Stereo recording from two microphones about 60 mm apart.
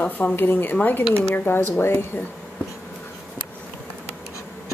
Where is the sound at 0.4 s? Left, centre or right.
Left.